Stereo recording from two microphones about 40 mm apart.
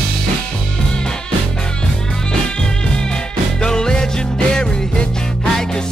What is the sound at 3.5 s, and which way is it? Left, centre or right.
Music, centre.